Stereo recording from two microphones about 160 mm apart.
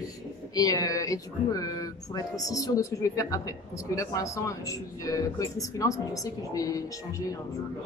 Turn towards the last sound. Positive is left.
turn(degrees=20)  # may be behind; listen again after turning